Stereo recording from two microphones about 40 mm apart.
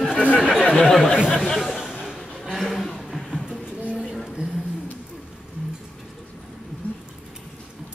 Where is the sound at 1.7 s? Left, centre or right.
Centre.